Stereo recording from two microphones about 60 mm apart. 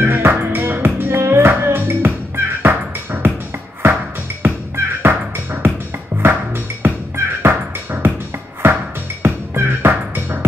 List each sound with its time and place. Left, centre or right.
0.0 s music: right
4.4 s music: right